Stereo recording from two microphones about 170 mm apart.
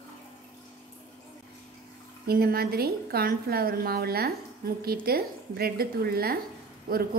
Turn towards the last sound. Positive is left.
turn(degrees=-60)  # may be behind; listen again after turning